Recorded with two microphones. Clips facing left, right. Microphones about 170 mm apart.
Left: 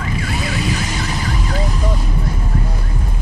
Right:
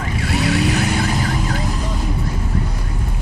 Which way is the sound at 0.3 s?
70° right (ahead or behind).